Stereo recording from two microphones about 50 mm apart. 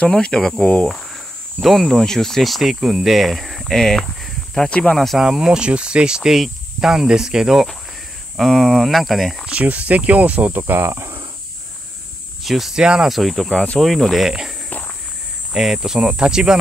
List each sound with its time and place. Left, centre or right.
0.1 s speech: centre
4.6 s speech: left
4.9 s speech: centre
5.2 s speech: centre
8.4 s speech: centre
9.5 s speech: right
10.9 s speech: right
12.4 s speech: centre
12.7 s speech: centre
13.1 s speech: centre
15.5 s speech: centre